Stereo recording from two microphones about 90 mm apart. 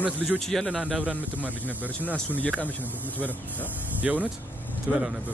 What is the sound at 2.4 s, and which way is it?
Speech, 15° left (ahead or behind).